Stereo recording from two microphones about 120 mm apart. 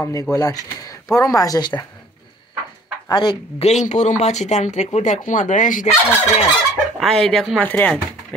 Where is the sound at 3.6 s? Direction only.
75° left (ahead or behind).